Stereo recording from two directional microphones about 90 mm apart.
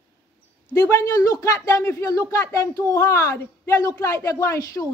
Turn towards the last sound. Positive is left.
turn(degrees=35)  # may be behind; listen again after turning